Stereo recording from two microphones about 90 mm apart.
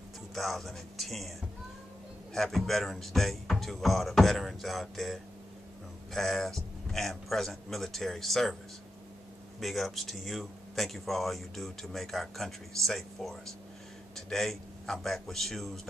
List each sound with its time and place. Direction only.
0.3 s speech: centre (ahead or behind)
2.3 s speech: 5° left (ahead or behind)
9.6 s speech: centre (ahead or behind)